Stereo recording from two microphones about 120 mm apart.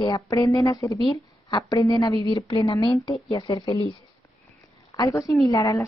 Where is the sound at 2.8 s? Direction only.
45° left (ahead or behind).